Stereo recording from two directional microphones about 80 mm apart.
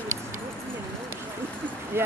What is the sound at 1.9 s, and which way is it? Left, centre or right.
Speech, right.